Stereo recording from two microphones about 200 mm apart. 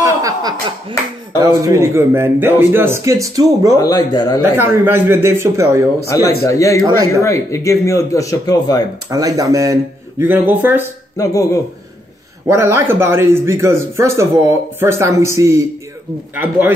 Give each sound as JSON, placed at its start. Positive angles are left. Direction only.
{"t": 0.0, "sound": "a sound", "side_deg": -20}
{"t": 1.6, "sound": "speech", "side_deg": -15}
{"t": 3.8, "sound": "speech", "side_deg": 20}
{"t": 4.4, "sound": "speech", "side_deg": -10}
{"t": 6.4, "sound": "speech", "side_deg": 15}
{"t": 9.1, "sound": "speech", "side_deg": -15}
{"t": 11.1, "sound": "speech", "side_deg": 15}
{"t": 12.4, "sound": "speech", "side_deg": -15}